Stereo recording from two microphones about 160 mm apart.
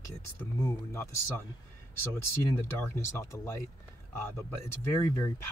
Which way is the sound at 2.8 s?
15° left (ahead or behind).